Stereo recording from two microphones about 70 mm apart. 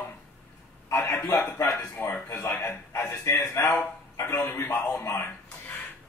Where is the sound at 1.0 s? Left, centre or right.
Left.